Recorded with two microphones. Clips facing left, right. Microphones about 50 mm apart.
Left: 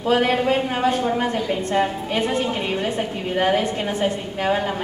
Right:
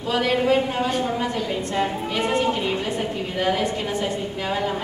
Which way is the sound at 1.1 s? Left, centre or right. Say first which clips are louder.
Left 3 dB; left.